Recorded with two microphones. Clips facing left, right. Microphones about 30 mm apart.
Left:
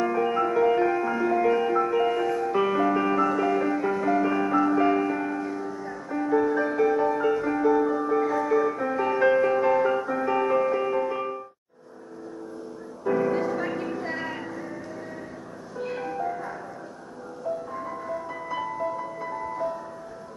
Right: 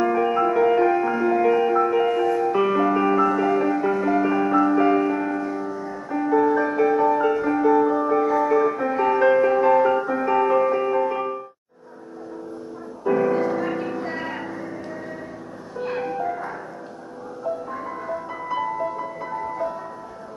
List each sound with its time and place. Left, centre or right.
0.0 s music: centre
13.0 s music: centre
15.8 s music: right
17.7 s music: centre